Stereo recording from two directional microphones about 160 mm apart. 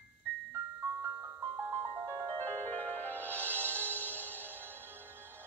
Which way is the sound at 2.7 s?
10° left (ahead or behind).